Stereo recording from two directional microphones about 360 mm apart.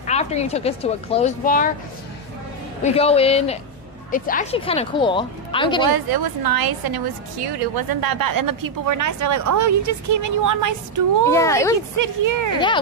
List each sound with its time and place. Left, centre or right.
0.0 s speech: centre
2.8 s speech: centre
5.9 s a woman's voice: right
11.2 s speech: centre
12.0 s a woman's voice: right